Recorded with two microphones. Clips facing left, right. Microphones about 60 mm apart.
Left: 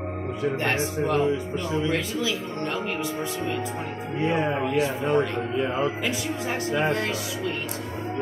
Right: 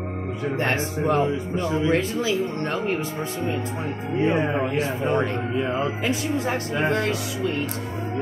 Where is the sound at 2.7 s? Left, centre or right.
Right.